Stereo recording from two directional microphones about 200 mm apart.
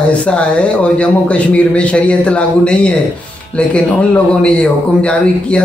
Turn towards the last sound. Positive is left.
turn(degrees=5)  # may be behind; listen again after turning